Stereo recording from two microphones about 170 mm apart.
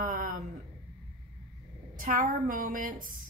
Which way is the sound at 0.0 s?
55° right (ahead or behind).